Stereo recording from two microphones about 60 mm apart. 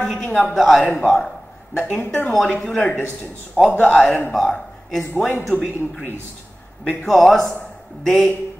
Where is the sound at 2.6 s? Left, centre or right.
Centre.